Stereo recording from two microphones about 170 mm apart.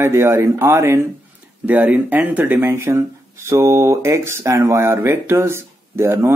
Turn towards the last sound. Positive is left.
turn(degrees=-15)  # may be behind; listen again after turning